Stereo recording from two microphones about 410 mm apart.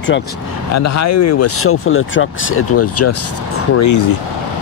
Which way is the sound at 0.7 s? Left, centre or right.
Left.